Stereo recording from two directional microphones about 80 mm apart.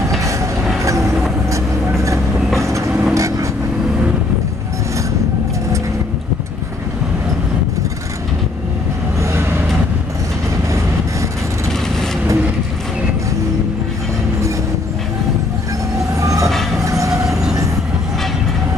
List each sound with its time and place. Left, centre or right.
0.2 s train: right
1.5 s vehicle: right
16.2 s train: right